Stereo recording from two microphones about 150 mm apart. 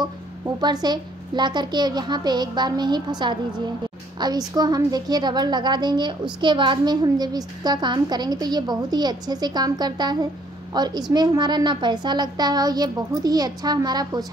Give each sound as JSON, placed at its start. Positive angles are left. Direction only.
{"t": 0.6, "sound": "a woman's voice", "side_deg": -30}